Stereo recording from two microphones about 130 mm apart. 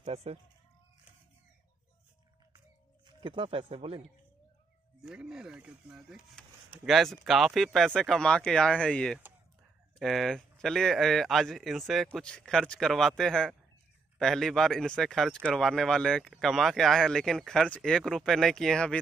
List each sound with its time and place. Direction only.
0.0 s speech: 50° right (ahead or behind)
3.1 s speech: 40° right (ahead or behind)
5.0 s speech: 5° right (ahead or behind)